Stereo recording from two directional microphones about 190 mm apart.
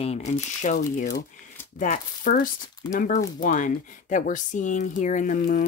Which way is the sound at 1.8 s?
45° left (ahead or behind).